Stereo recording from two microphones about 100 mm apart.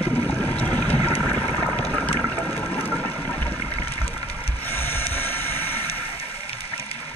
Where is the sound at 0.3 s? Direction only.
15° left (ahead or behind).